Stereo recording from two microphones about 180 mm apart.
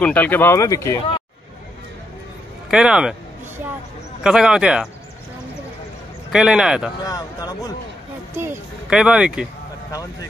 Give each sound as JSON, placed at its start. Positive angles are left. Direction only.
{"t": 0.0, "sound": "speech", "side_deg": 10}
{"t": 2.7, "sound": "a sound", "side_deg": -5}
{"t": 4.2, "sound": "speech", "side_deg": -5}
{"t": 6.3, "sound": "speech", "side_deg": -5}
{"t": 7.1, "sound": "speech", "side_deg": 20}
{"t": 8.4, "sound": "speech", "side_deg": -10}